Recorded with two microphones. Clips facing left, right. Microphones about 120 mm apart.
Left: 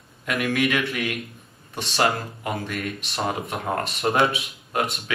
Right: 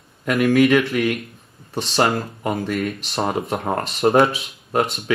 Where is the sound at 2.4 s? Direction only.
35° right (ahead or behind).